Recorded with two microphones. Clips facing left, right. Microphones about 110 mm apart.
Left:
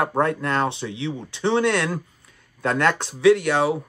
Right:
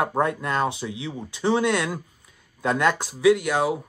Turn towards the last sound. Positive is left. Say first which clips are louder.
# left 2 dB
turn(degrees=-10)  # may be behind; listen again after turning